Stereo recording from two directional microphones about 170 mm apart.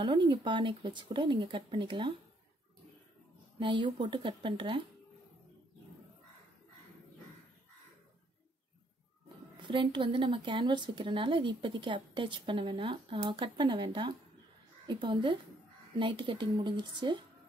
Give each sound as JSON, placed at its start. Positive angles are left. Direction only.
{"t": 0.0, "sound": "a woman's voice", "side_deg": -30}
{"t": 3.5, "sound": "a woman's voice", "side_deg": -30}
{"t": 9.6, "sound": "a woman's voice", "side_deg": -30}